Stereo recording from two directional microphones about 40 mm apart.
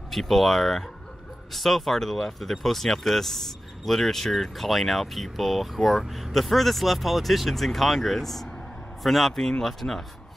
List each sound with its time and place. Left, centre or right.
0.1 s speech: centre